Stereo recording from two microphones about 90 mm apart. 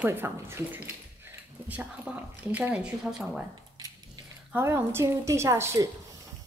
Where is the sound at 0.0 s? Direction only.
25° right (ahead or behind).